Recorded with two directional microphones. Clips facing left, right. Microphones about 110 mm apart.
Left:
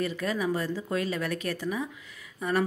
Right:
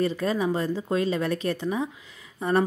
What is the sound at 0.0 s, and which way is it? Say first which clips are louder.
A woman's voice: right 4 dB; 30° right (ahead or behind).